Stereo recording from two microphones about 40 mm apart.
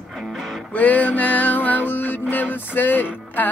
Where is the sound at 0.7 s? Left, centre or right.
Left.